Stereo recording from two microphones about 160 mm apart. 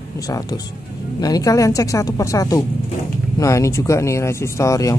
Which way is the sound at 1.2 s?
20° left (ahead or behind).